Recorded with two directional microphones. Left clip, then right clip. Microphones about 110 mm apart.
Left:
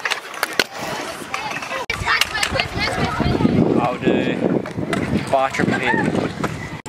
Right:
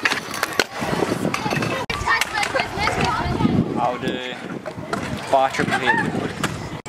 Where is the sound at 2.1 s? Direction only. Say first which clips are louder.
Left 1 dB; 25° left (ahead or behind).